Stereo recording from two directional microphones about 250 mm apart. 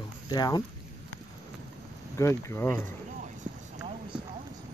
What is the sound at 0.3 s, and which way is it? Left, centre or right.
Speech, centre.